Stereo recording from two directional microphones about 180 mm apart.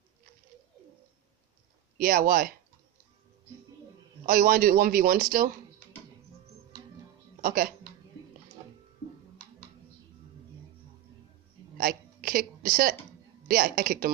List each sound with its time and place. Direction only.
2.0 s a man's voice: 55° right (ahead or behind)
4.3 s a man's voice: 55° right (ahead or behind)
7.4 s a man's voice: 55° right (ahead or behind)
11.8 s a sound: 50° right (ahead or behind)
13.5 s a man's voice: 50° right (ahead or behind)